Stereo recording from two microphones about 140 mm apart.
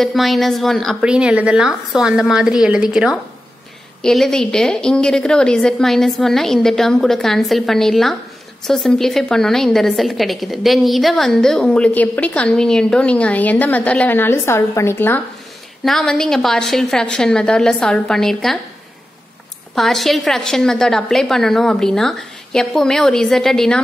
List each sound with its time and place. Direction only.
0.0 s a woman's voice: centre (ahead or behind)
15.8 s a woman's voice: centre (ahead or behind)
19.7 s a woman's voice: centre (ahead or behind)